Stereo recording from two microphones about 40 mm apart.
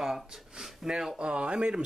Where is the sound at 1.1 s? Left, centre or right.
Right.